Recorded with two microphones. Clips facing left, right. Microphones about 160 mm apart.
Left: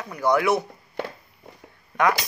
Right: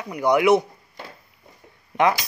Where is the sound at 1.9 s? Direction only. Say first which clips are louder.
Right 2 dB; 25° right (ahead or behind).